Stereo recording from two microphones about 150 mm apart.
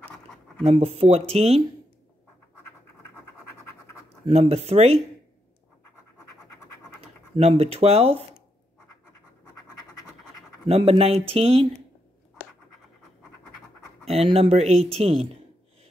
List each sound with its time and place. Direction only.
0.7 s speech: 40° right (ahead or behind)
4.3 s speech: 45° right (ahead or behind)
7.0 s speech: 45° right (ahead or behind)
10.7 s speech: 40° right (ahead or behind)
14.0 s speech: 40° right (ahead or behind)